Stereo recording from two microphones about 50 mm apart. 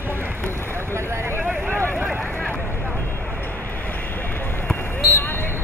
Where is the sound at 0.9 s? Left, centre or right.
Right.